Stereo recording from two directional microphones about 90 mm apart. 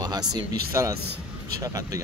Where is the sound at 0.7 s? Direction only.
35° right (ahead or behind).